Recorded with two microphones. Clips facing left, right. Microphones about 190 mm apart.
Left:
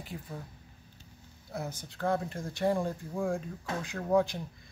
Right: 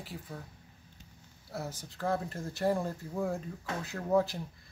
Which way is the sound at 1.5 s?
Centre (ahead or behind).